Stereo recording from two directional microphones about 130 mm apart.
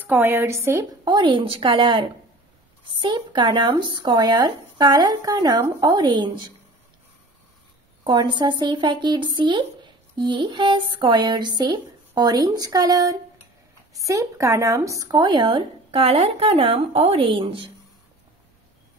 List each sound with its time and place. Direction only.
0.0 s a woman's voice: 15° right (ahead or behind)
1.0 s speech: 35° right (ahead or behind)
8.0 s speech: 35° right (ahead or behind)